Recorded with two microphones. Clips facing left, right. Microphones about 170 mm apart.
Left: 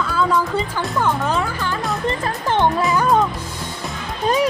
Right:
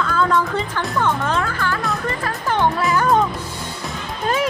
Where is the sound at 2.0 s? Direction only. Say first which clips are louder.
Left 2 dB; 20° left (ahead or behind).